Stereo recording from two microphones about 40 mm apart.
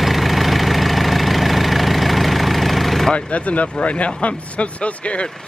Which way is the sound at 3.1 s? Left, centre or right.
Left.